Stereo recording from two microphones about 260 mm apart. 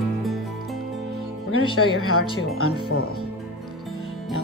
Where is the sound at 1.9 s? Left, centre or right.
Left.